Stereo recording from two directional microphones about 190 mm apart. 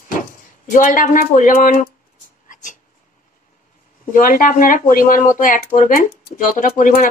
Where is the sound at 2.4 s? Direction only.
45° left (ahead or behind).